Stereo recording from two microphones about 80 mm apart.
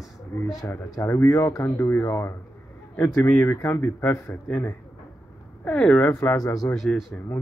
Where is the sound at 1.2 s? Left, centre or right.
Left.